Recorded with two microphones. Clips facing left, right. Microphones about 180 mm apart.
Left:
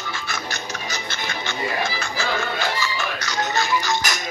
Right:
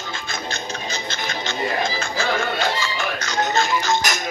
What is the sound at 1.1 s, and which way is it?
Music, 20° right (ahead or behind).